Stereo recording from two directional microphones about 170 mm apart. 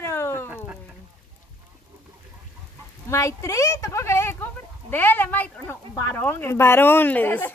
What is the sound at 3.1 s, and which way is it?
A woman's voice, 15° left (ahead or behind).